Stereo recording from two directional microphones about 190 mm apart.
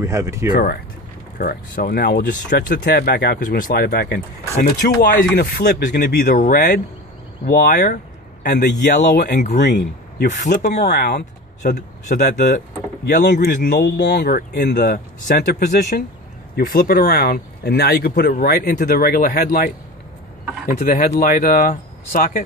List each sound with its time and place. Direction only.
0.0 s speech: 15° right (ahead or behind)
1.4 s speech: 50° left (ahead or behind)
8.5 s speech: 60° left (ahead or behind); by 9.6 s 40° left (ahead or behind)
9.6 s speech: 60° left (ahead or behind)
11.7 s a man's voice: 40° left (ahead or behind)
13.0 s speech: 60° left (ahead or behind)